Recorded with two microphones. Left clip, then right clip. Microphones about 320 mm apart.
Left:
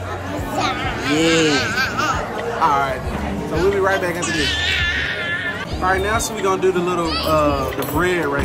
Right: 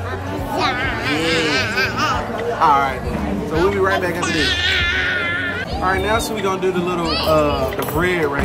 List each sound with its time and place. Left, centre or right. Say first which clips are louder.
1.5 s music: even; centre
2.6 s speech: right 3 dB; centre
4.4 s speech: right 2 dB; right
5.9 s speech: even; centre
8.0 s speech: right 1 dB; centre